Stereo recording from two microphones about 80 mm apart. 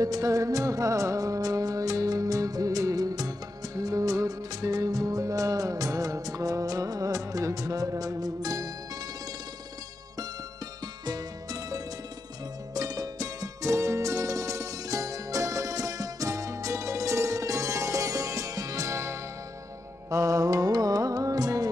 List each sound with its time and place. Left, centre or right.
0.0 s music: right
11.1 s music: right